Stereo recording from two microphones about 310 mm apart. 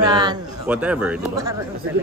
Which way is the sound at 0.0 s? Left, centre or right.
Centre.